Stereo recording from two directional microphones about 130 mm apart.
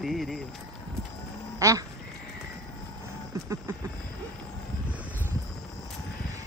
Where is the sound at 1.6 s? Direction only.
25° right (ahead or behind).